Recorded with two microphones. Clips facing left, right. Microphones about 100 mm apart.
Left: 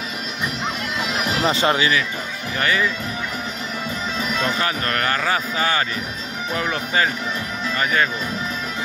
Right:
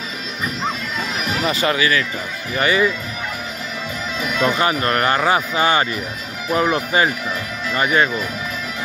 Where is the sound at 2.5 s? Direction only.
15° right (ahead or behind).